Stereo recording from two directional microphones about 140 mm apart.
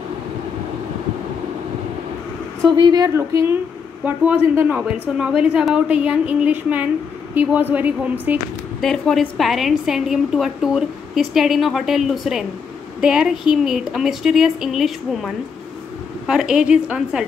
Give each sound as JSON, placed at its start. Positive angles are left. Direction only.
{"t": 2.8, "sound": "a woman's voice", "side_deg": -30}
{"t": 3.2, "sound": "a woman's voice", "side_deg": -20}
{"t": 8.8, "sound": "a woman's voice", "side_deg": 0}